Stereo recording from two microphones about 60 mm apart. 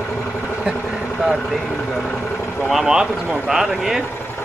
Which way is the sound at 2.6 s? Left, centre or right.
Centre.